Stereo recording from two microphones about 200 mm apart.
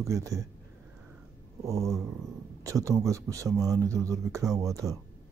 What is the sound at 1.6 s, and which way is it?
Speech, 15° right (ahead or behind).